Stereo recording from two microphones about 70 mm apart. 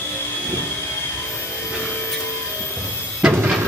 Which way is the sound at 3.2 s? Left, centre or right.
Centre.